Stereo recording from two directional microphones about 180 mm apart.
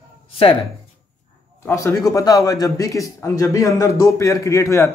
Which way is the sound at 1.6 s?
15° left (ahead or behind).